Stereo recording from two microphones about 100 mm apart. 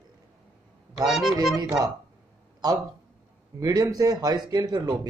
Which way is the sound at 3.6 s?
40° right (ahead or behind).